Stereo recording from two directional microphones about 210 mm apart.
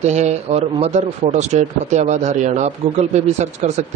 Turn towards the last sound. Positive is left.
turn(degrees=-35)  # may be behind; listen again after turning